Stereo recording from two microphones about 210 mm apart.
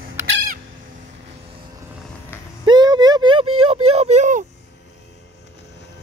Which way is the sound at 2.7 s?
20° right (ahead or behind).